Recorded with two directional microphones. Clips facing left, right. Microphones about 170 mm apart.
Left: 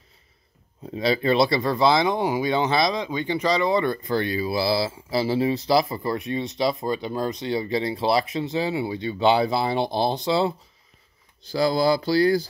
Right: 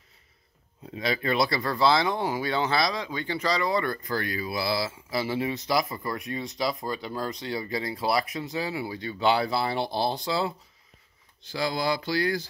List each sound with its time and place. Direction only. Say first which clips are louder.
0.8 s speech: left 6 dB; 30° left (ahead or behind)
11.4 s speech: left 7 dB; 35° left (ahead or behind)